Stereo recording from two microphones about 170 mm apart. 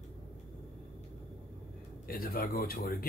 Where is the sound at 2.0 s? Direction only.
60° left (ahead or behind).